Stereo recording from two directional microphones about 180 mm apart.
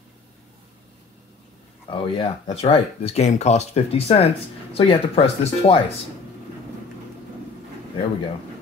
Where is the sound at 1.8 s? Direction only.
25° left (ahead or behind).